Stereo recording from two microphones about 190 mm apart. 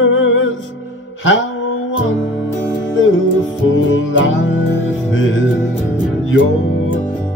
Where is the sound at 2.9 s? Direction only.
90° left.